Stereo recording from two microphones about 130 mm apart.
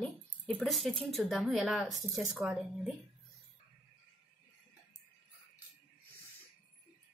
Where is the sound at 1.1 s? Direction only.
Centre (ahead or behind).